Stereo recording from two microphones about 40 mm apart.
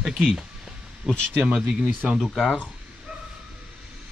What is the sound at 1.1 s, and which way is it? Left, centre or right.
Speech, centre.